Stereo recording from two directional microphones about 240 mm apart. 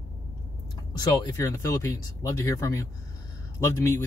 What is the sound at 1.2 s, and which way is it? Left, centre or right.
Speech, centre.